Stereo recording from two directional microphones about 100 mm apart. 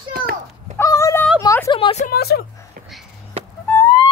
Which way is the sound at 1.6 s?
75° left (ahead or behind).